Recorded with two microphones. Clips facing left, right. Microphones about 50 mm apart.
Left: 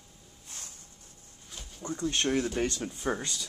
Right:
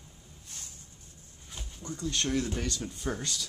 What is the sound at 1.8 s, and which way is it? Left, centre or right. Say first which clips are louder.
Speech: left 3 dB; left.